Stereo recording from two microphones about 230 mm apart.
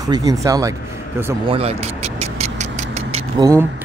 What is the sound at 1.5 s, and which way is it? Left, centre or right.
Music, right.